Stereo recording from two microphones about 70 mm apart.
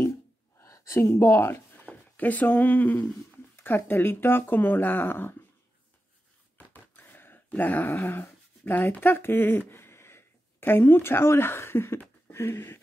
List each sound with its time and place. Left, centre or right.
0.6 s speech: left
1.8 s speech: left
6.7 s dog: left